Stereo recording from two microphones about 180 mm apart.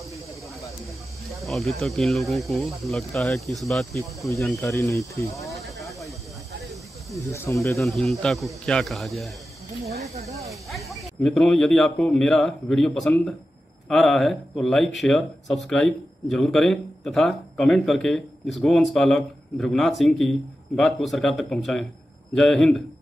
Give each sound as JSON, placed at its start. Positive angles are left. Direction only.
{"t": 1.4, "sound": "speech", "side_deg": 0}
{"t": 4.6, "sound": "speech", "side_deg": 15}
{"t": 5.5, "sound": "snake", "side_deg": 0}
{"t": 7.2, "sound": "speech", "side_deg": 15}
{"t": 7.8, "sound": "speech", "side_deg": 0}
{"t": 10.5, "sound": "speech", "side_deg": 0}